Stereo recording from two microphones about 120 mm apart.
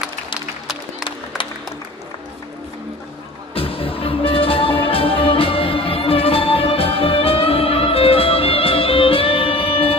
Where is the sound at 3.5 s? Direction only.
50° left (ahead or behind).